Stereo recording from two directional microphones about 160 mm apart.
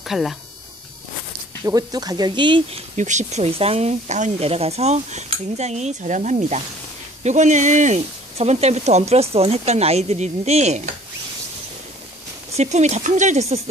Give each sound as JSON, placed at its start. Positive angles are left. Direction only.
{"t": 0.0, "sound": "speech", "side_deg": 0}
{"t": 1.6, "sound": "speech", "side_deg": -20}
{"t": 3.0, "sound": "speech", "side_deg": -50}
{"t": 12.5, "sound": "speech", "side_deg": -45}